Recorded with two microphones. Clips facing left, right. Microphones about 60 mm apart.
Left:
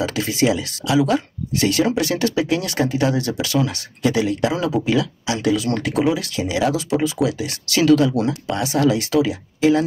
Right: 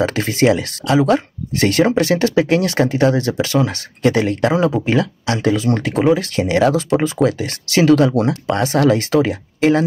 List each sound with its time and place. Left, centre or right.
0.0 s speech: right
7.7 s speech: right
8.0 s speech: right